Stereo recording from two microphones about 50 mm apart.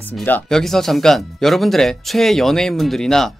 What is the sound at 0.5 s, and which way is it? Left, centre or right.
Speech, centre.